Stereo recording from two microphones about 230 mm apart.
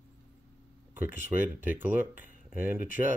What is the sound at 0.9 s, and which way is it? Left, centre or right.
Speech, centre.